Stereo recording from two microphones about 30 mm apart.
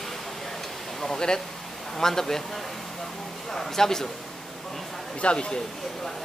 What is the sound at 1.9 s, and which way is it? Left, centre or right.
Speech, centre.